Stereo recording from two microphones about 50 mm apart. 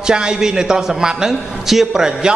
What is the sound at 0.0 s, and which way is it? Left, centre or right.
A man's voice, centre.